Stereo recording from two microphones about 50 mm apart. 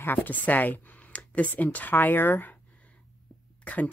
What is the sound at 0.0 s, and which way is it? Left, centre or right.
Speech, left.